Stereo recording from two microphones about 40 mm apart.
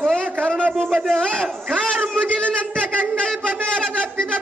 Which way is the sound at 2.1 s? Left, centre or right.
Left.